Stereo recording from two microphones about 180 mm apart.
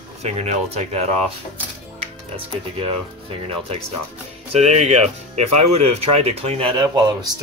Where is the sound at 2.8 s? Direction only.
35° right (ahead or behind).